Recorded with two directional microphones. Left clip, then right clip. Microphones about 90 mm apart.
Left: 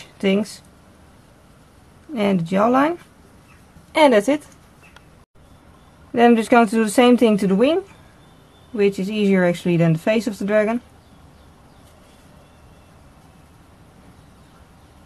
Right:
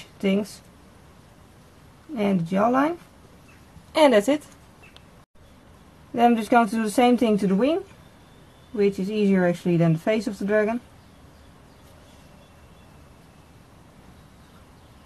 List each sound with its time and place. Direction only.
0.2 s speech: 25° left (ahead or behind)
2.1 s speech: 30° left (ahead or behind)
3.9 s a woman's voice: 10° left (ahead or behind)
6.1 s speech: 30° left (ahead or behind)